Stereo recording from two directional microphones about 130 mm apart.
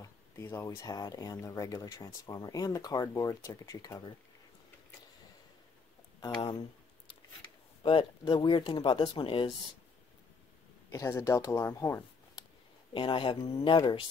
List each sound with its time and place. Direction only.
0.0 s speech: 20° left (ahead or behind)
7.8 s speech: 40° left (ahead or behind)
10.9 s speech: 25° left (ahead or behind)
12.9 s speech: 40° left (ahead or behind)